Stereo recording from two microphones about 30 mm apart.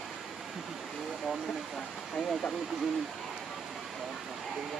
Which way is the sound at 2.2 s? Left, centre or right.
Centre.